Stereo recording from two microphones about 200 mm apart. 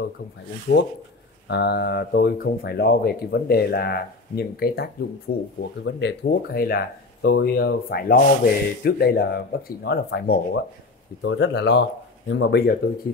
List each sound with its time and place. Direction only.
0.7 s speech: 50° left (ahead or behind)
5.6 s speech: 60° left (ahead or behind)